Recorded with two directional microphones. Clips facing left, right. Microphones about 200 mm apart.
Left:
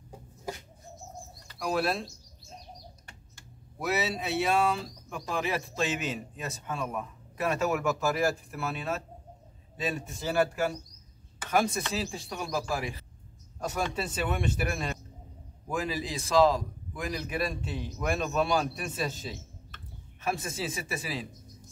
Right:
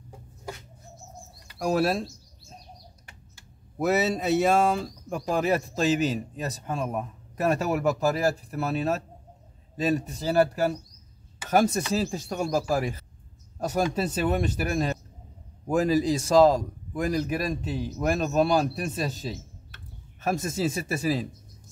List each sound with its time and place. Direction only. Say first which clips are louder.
1.6 s speech: right 5 dB; 40° right (ahead or behind)
3.8 s a man's voice: right 7 dB; 45° right (ahead or behind)
13.6 s a sound: right 6 dB; 40° right (ahead or behind)
13.9 s a man's voice: right 6 dB; 40° right (ahead or behind)
20.2 s a man's voice: right 5 dB; 40° right (ahead or behind)